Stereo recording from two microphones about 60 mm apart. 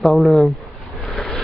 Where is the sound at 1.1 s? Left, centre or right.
Centre.